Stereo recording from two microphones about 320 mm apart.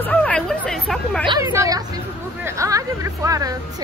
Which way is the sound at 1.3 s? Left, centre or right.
Centre.